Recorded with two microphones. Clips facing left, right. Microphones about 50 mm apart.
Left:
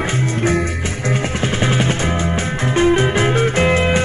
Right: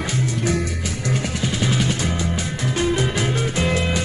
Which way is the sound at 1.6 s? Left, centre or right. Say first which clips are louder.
Left 4 dB; left.